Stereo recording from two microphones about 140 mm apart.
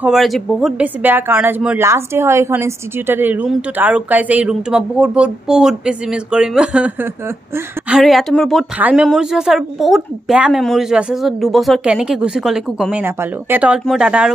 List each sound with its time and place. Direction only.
0.0 s speech: centre (ahead or behind)
1.0 s speech: 15° right (ahead or behind)
7.2 s speech: 20° right (ahead or behind)
8.0 s speech: centre (ahead or behind)
8.7 s speech: 10° right (ahead or behind)
12.9 s speech: 15° right (ahead or behind)